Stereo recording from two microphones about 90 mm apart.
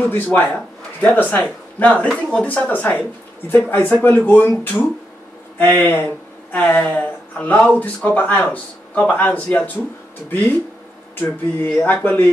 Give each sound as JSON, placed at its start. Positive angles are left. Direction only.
{"t": 0.0, "sound": "speech", "side_deg": 20}
{"t": 11.1, "sound": "speech", "side_deg": 20}